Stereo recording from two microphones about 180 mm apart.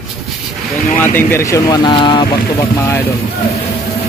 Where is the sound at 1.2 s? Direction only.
15° left (ahead or behind).